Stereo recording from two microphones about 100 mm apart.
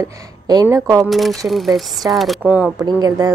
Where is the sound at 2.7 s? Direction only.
40° right (ahead or behind).